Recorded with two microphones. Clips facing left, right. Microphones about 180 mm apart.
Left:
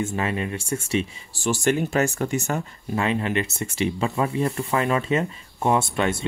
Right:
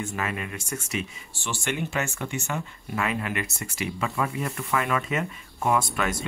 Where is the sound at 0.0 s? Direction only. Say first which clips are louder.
Left 5 dB; 30° left (ahead or behind).